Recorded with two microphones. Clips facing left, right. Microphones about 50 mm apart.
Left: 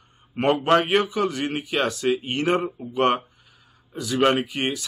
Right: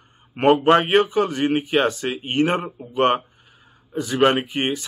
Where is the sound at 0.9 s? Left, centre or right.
Right.